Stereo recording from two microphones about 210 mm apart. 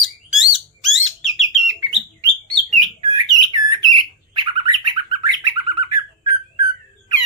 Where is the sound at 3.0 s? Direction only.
20° right (ahead or behind).